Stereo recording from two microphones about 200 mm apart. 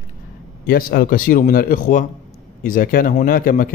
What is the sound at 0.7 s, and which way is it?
Speech, 50° left (ahead or behind).